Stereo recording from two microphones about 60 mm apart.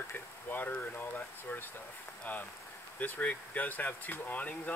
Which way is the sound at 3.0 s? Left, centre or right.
Left.